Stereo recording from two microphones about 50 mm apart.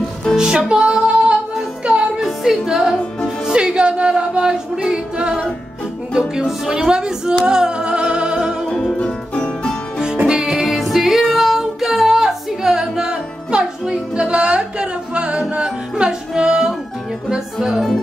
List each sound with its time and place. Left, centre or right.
0.4 s music: centre
2.1 s music: centre
3.4 s a capella: centre
6.4 s music: centre
8.9 s music: centre
10.2 s music: centre
17.3 s speech: centre